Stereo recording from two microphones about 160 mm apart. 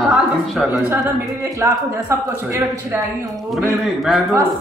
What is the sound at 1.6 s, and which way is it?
A man's voice, 15° right (ahead or behind).